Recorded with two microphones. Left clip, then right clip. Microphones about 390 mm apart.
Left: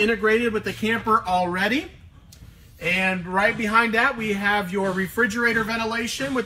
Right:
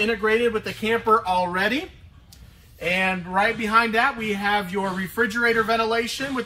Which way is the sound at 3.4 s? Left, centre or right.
Centre.